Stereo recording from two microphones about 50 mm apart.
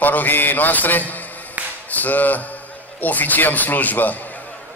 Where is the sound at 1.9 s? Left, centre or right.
Left.